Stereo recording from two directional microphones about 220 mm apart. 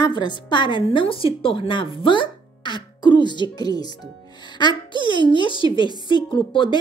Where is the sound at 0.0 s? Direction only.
20° left (ahead or behind).